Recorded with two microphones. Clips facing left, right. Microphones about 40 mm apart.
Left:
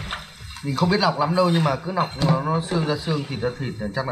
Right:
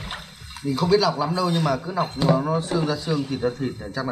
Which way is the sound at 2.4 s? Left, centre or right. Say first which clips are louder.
Even; centre.